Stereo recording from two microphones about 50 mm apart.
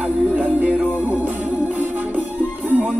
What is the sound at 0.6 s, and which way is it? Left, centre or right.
Music, right.